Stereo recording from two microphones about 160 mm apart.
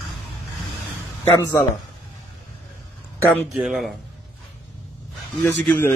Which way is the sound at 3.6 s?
Centre (ahead or behind).